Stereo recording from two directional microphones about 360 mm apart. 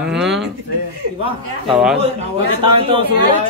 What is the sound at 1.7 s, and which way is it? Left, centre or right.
Speech, centre.